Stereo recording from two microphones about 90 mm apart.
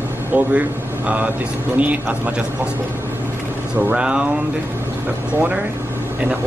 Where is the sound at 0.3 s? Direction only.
20° right (ahead or behind).